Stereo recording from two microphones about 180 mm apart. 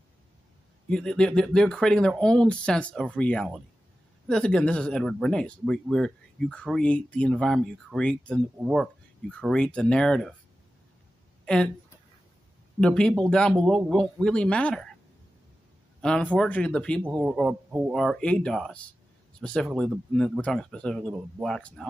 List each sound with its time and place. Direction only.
0.8 s speech: 5° left (ahead or behind)
8.5 s speech: 5° right (ahead or behind)
9.3 s speech: 5° left (ahead or behind)
11.4 s speech: 5° left (ahead or behind)
12.8 s speech: 5° left (ahead or behind)
16.0 s speech: 5° left (ahead or behind)
17.9 s speech: 5° left (ahead or behind)